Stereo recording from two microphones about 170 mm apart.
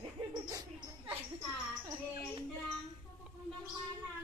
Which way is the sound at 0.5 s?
20° right (ahead or behind).